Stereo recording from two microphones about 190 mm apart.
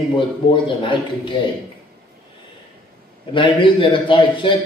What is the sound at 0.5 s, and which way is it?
Speech, 25° left (ahead or behind).